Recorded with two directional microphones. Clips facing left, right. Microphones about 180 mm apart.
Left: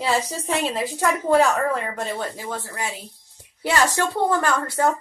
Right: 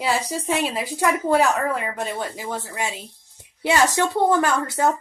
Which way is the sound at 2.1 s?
15° right (ahead or behind).